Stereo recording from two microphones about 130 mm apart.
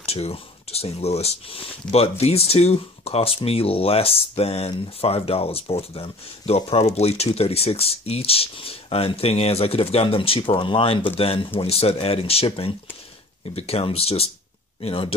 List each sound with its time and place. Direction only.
0.0 s speech: 50° left (ahead or behind)